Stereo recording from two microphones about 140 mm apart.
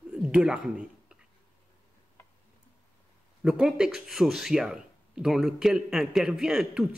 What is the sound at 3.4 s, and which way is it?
A man's voice, 5° right (ahead or behind).